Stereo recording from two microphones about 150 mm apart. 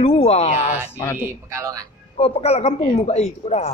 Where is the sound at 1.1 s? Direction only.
15° right (ahead or behind).